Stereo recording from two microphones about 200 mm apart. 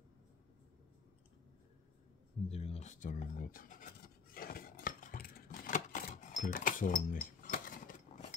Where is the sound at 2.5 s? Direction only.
30° left (ahead or behind).